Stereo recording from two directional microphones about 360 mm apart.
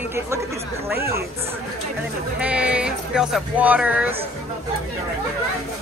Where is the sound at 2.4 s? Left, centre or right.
Centre.